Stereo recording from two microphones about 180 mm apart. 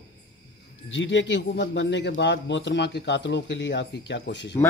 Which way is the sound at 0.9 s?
90° left.